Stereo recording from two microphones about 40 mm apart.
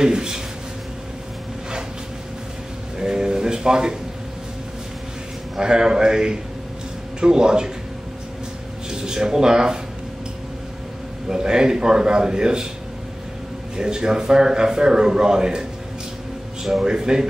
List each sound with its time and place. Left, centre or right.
0.0 s a man's voice: centre
3.0 s a sound: centre
5.6 s a man's voice: centre
8.9 s a man's voice: centre
11.2 s a man's voice: centre
13.7 s a man's voice: centre
16.8 s a man's voice: centre